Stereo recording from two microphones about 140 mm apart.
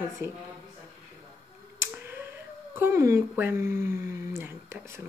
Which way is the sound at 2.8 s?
20° right (ahead or behind).